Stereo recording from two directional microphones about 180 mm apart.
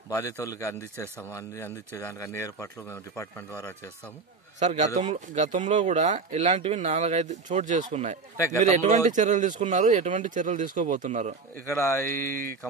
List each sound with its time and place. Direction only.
0.1 s speech: 20° left (ahead or behind)
4.6 s speech: 40° right (ahead or behind)
11.6 s speech: 15° left (ahead or behind)